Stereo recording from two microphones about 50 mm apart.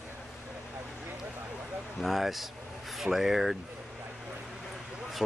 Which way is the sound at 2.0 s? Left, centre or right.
Centre.